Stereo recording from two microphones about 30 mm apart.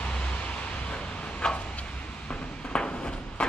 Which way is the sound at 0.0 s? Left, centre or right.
Left.